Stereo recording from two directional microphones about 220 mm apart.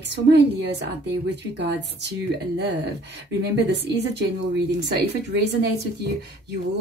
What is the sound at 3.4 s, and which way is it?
Speech, 50° right (ahead or behind).